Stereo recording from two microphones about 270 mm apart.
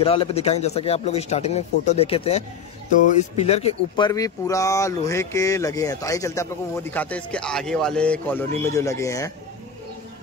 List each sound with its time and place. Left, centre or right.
0.0 s a man's voice: left